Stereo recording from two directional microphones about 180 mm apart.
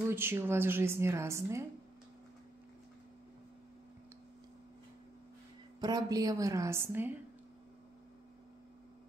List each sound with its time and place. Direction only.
0.1 s a woman's voice: 15° right (ahead or behind)
5.8 s a woman's voice: 20° right (ahead or behind)